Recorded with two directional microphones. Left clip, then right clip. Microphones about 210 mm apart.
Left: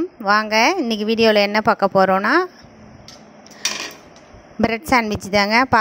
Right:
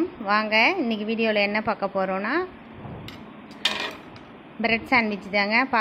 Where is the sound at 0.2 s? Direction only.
75° left (ahead or behind).